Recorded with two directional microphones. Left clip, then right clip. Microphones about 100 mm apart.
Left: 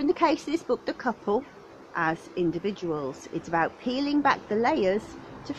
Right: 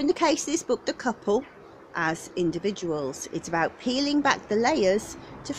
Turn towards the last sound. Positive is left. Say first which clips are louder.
# right 2 dB
turn(degrees=-15)  # may be behind; listen again after turning